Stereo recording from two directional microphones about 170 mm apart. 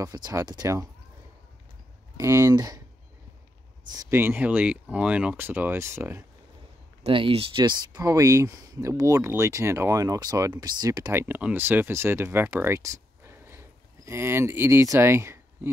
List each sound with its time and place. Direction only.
0.0 s speech: 20° right (ahead or behind)
2.1 s speech: 15° right (ahead or behind)
3.9 s speech: 15° right (ahead or behind)
7.0 s speech: 30° right (ahead or behind); by 15.7 s 15° right (ahead or behind)